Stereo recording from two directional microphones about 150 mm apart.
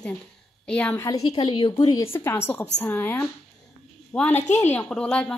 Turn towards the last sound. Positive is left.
turn(degrees=10)  # may be behind; listen again after turning